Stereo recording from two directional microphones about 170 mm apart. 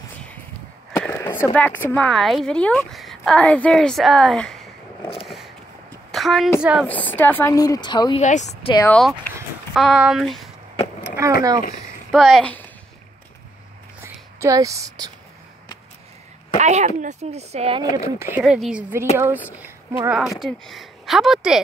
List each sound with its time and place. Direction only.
1.0 s speech: 10° left (ahead or behind)
6.1 s a woman's voice: centre (ahead or behind)
6.9 s speech: 10° left (ahead or behind); by 8.2 s 25° left (ahead or behind)
8.2 s speech: 45° left (ahead or behind)
8.8 s speech: 10° left (ahead or behind)
9.8 s speech: 5° right (ahead or behind)
11.1 s a sound: 15° right (ahead or behind)
12.1 s a child's voice: centre (ahead or behind)
14.0 s a woman's voice: 20° right (ahead or behind)
16.5 s speech: 40° right (ahead or behind)
17.9 s speech: 15° right (ahead or behind)
18.4 s speech: 5° right (ahead or behind)